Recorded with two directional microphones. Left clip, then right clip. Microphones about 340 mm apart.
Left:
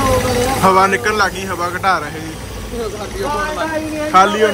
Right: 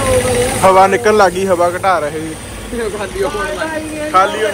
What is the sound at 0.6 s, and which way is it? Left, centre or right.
A man's voice, centre.